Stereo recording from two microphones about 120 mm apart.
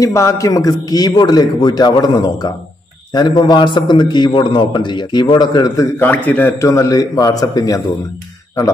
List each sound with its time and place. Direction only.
0.0 s a man's voice: 25° left (ahead or behind)
5.9 s a man's voice: 15° left (ahead or behind); by 7.8 s 30° left (ahead or behind)